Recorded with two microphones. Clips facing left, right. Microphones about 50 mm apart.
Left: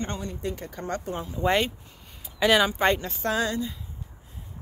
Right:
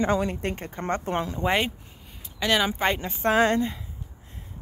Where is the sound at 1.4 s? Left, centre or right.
Centre.